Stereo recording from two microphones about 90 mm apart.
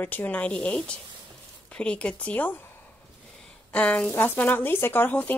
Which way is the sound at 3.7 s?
15° left (ahead or behind).